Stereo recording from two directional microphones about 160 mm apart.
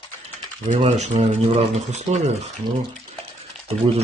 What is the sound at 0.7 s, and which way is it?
Speech, 45° right (ahead or behind).